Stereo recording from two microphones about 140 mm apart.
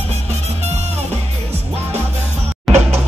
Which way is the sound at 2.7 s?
Centre (ahead or behind).